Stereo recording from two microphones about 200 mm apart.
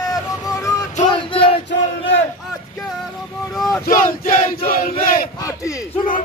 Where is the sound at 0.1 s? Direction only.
15° left (ahead or behind).